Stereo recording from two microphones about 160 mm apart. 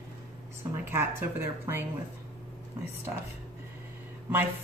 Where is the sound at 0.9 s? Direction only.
15° right (ahead or behind).